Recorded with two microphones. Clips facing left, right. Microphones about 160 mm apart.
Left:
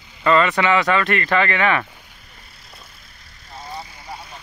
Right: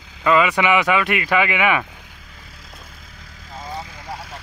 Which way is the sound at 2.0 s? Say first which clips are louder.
Right 3 dB; 90° right.